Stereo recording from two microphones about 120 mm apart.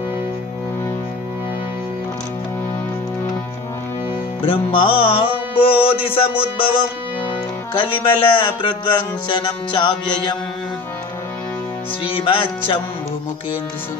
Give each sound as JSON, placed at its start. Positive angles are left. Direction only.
{"t": 4.5, "sound": "music", "side_deg": 45}
{"t": 7.7, "sound": "music", "side_deg": 45}
{"t": 12.1, "sound": "music", "side_deg": 45}